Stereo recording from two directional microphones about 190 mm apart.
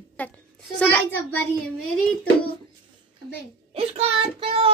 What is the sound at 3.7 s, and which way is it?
Speech, 30° right (ahead or behind).